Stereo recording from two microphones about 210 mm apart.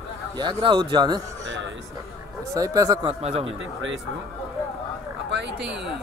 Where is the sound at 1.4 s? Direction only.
60° right (ahead or behind).